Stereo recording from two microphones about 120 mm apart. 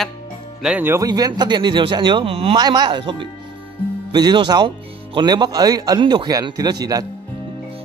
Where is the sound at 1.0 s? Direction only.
35° right (ahead or behind); by 2.5 s 55° right (ahead or behind).